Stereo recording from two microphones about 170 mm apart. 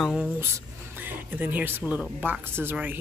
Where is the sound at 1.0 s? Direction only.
10° right (ahead or behind).